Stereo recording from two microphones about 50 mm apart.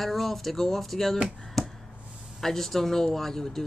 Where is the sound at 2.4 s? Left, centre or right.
Centre.